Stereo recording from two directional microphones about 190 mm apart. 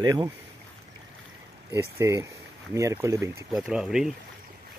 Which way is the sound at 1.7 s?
15° right (ahead or behind).